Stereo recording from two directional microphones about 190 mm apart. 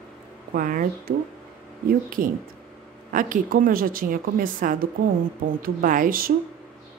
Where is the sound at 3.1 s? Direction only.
45° right (ahead or behind).